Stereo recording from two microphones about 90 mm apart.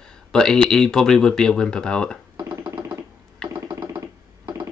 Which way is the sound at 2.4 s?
50° right (ahead or behind).